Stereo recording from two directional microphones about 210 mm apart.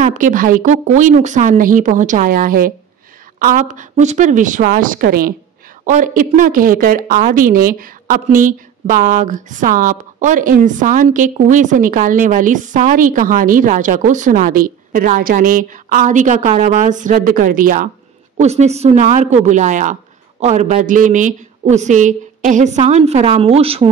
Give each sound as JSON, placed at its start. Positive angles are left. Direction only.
{"t": 0.0, "sound": "a woman's voice", "side_deg": -35}